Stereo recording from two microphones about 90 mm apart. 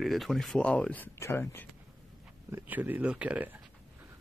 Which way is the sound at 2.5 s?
20° right (ahead or behind).